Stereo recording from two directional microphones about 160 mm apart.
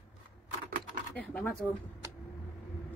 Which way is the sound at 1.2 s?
10° left (ahead or behind).